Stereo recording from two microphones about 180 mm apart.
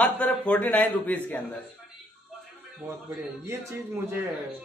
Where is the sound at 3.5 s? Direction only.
15° right (ahead or behind).